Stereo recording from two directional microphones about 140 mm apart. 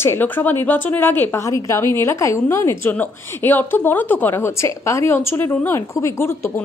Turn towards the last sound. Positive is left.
turn(degrees=20)  # may be behind; listen again after turning